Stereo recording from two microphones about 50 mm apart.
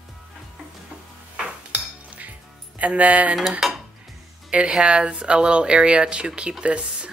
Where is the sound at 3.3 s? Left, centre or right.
Centre.